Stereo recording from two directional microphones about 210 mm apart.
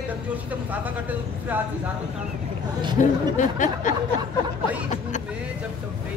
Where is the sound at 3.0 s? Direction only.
35° left (ahead or behind).